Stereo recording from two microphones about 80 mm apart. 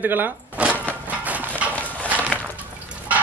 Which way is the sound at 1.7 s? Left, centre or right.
Centre.